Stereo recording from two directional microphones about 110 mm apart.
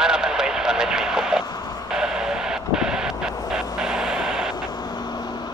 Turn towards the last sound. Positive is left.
turn(degrees=-5)  # may be behind; listen again after turning